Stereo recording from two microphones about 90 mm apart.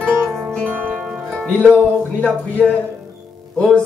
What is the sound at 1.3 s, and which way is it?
Music, 5° left (ahead or behind).